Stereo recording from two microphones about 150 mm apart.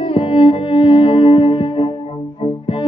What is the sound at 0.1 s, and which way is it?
Music, 35° left (ahead or behind).